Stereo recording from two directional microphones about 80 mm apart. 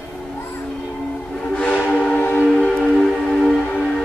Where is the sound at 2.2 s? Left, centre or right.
Left.